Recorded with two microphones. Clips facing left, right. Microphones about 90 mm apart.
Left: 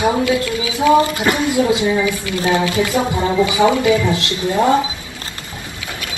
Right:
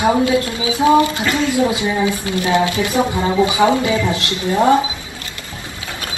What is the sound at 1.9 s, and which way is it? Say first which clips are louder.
Speech: left 1 dB; 25° right (ahead or behind).